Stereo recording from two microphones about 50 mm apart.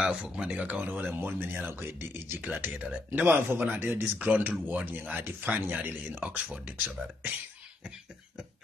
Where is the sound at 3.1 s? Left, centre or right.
Right.